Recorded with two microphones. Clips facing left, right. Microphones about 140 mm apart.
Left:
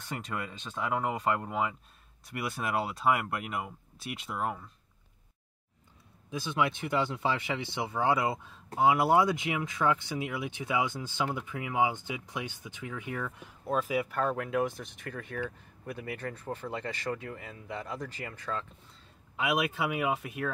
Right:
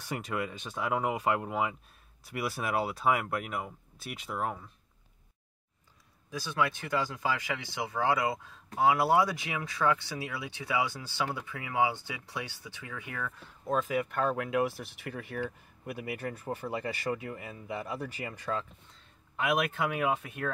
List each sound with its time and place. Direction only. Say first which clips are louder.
0.0 s speech: right 3 dB; 10° right (ahead or behind)
6.3 s speech: left 1 dB; 20° left (ahead or behind)
13.7 s speech: even; 5° left (ahead or behind); by 18.7 s 10° right (ahead or behind)
19.4 s speech: even; 10° left (ahead or behind)